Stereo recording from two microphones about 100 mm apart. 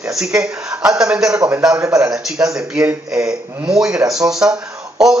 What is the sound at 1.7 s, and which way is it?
Speech, 30° right (ahead or behind).